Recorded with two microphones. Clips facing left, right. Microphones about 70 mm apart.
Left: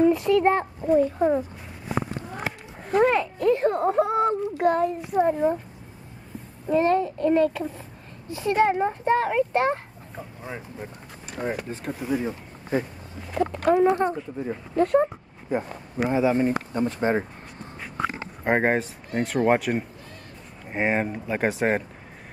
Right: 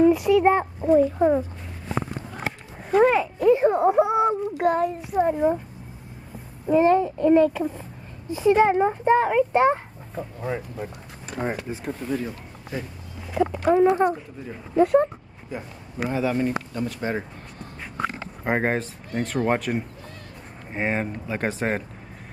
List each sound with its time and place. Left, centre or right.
0.0 s a child's voice: centre
2.8 s a child's voice: centre
6.7 s a child's voice: centre
11.4 s speech: right
11.7 s a child's voice: centre
12.7 s speech: left
13.3 s a child's voice: centre
14.8 s a child's voice: centre
15.5 s speech: left
16.0 s speech: left
18.4 s a child's voice: centre